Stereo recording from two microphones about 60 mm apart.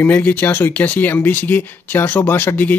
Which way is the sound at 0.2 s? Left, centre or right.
Left.